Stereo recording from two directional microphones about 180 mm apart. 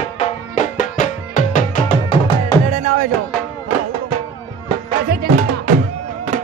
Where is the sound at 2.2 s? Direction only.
30° left (ahead or behind).